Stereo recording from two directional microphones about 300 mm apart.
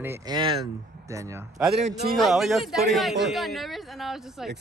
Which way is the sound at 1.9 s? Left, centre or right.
Right.